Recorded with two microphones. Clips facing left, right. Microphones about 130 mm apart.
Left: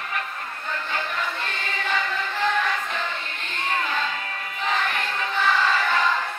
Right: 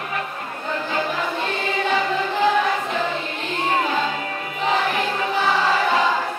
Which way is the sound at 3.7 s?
30° right (ahead or behind).